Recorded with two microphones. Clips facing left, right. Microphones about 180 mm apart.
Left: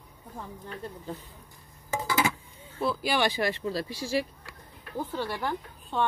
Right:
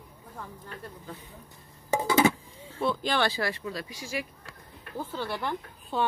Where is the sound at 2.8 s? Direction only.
5° left (ahead or behind); by 4.2 s 35° left (ahead or behind).